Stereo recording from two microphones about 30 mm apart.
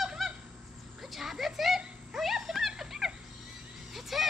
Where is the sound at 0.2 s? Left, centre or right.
Centre.